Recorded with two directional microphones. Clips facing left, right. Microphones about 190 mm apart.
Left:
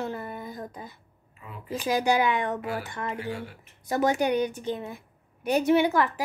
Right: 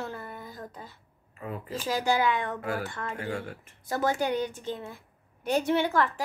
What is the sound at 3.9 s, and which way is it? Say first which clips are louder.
A woman's voice: left 3 dB; 15° left (ahead or behind).